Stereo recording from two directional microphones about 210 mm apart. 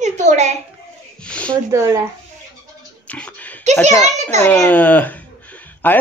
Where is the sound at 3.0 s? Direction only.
5° left (ahead or behind).